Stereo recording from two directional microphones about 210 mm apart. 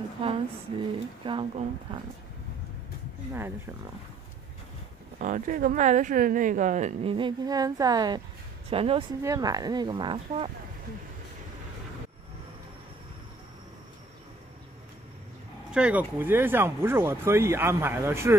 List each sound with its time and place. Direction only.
0.2 s speech: 25° right (ahead or behind)
3.3 s speech: 10° right (ahead or behind)
5.2 s a woman's voice: 40° right (ahead or behind)
15.7 s speech: 5° right (ahead or behind)